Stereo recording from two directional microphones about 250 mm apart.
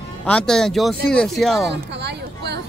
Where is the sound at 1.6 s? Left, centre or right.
Right.